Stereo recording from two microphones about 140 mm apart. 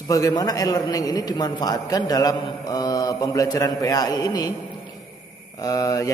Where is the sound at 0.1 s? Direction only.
25° left (ahead or behind).